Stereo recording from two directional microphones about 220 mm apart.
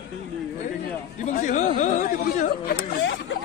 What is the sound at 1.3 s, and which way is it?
A man's voice, 35° left (ahead or behind).